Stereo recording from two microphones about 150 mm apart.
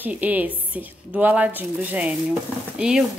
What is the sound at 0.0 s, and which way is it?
A woman's voice, 10° right (ahead or behind).